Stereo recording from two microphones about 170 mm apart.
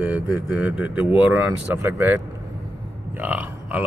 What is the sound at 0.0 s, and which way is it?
Speech, 10° right (ahead or behind).